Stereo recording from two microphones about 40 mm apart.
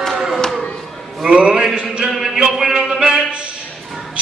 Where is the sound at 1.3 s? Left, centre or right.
Right.